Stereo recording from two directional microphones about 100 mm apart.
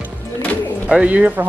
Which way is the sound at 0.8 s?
10° right (ahead or behind).